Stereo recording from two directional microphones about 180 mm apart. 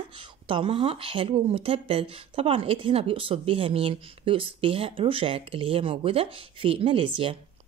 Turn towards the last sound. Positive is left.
turn(degrees=-30)  # may be behind; listen again after turning